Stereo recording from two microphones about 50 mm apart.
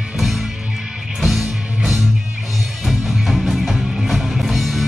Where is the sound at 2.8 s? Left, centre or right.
Centre.